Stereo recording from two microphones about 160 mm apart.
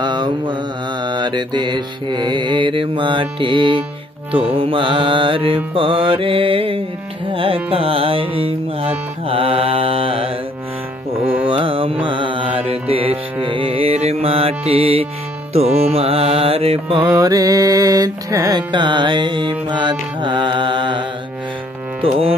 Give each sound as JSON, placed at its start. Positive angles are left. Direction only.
{"t": 0.0, "sound": "mantra", "side_deg": -30}
{"t": 1.0, "sound": "music", "side_deg": -30}
{"t": 11.4, "sound": "music", "side_deg": -35}